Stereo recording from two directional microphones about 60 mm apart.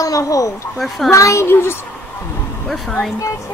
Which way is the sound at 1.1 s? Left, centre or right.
Left.